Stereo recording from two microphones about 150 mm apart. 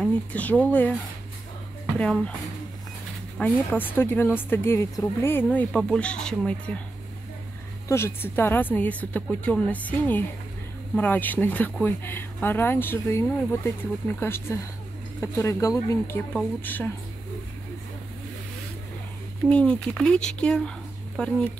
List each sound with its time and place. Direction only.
0.3 s speech: 10° left (ahead or behind)
2.0 s speech: 10° left (ahead or behind)
3.3 s speech: 10° left (ahead or behind)
7.9 s speech: 15° left (ahead or behind)
16.3 s speech: 10° left (ahead or behind)
19.5 s speech: 5° left (ahead or behind)